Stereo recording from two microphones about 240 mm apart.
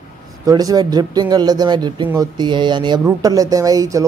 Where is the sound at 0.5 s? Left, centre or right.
Centre.